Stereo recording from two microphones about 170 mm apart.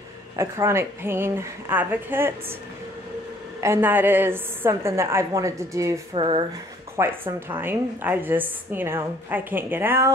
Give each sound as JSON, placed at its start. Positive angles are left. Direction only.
{"t": 0.4, "sound": "a woman's voice", "side_deg": -15}
{"t": 3.6, "sound": "a woman's voice", "side_deg": -15}
{"t": 6.1, "sound": "speech", "side_deg": -30}
{"t": 7.0, "sound": "a woman's voice", "side_deg": -15}